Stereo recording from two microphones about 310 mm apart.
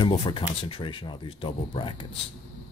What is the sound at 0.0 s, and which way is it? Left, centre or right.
Speech, centre.